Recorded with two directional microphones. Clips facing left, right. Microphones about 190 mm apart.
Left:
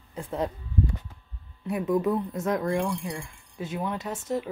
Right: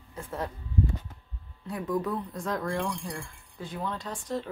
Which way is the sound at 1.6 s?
25° left (ahead or behind).